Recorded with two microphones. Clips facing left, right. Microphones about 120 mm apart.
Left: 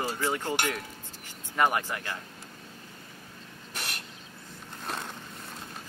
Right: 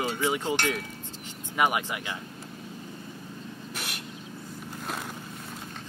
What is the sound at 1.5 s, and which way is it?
Speech, 10° right (ahead or behind).